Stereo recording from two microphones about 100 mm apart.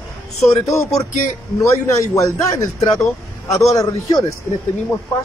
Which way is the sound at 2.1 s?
30° left (ahead or behind).